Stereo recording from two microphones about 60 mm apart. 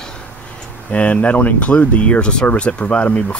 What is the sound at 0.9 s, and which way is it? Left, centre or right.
Speech, left.